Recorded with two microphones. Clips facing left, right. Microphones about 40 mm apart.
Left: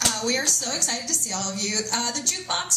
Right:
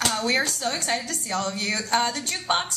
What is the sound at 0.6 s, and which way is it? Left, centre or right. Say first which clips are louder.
A woman's voice: right 3 dB; right.